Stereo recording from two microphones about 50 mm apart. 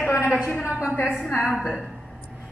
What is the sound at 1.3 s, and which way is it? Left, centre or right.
Speech, centre.